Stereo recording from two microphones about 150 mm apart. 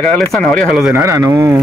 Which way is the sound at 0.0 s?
5° left (ahead or behind).